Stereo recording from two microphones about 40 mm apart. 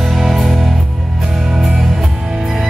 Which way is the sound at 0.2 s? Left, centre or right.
Centre.